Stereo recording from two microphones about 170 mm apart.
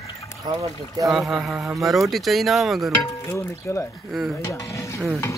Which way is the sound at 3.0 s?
15° left (ahead or behind).